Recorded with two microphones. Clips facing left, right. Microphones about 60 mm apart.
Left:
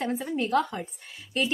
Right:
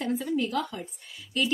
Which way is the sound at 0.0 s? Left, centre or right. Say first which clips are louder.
Right 1 dB; left.